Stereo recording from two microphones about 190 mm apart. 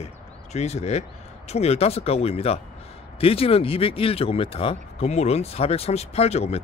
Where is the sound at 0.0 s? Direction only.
35° left (ahead or behind).